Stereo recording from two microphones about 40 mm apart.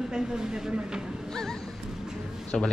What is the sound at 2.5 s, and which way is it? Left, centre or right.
Speech, centre.